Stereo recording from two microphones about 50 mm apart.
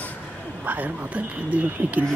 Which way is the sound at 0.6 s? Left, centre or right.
Right.